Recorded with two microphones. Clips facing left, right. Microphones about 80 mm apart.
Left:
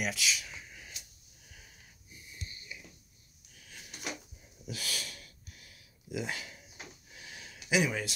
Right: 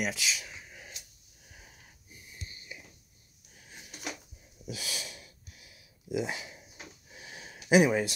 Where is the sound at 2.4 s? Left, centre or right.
Right.